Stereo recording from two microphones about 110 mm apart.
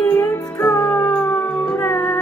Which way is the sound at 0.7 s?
35° left (ahead or behind).